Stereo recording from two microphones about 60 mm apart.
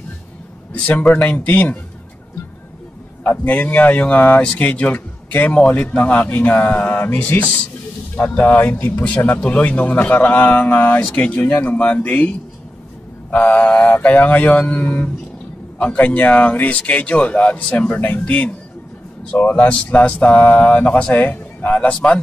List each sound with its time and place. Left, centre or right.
0.7 s a man's voice: left
3.3 s a man's voice: left
19.5 s a man's voice: left